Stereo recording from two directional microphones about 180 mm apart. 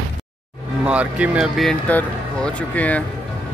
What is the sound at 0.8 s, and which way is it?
Speech, 5° right (ahead or behind).